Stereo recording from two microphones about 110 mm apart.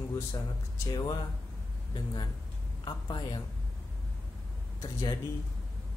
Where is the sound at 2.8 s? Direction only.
45° left (ahead or behind).